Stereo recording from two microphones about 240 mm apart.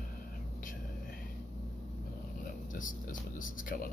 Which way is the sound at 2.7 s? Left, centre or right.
Left.